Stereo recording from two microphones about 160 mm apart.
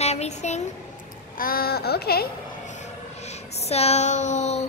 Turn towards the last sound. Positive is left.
turn(degrees=45)  # may be behind; listen again after turning